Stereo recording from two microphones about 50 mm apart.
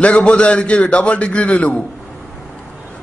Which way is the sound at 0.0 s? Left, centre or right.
Left.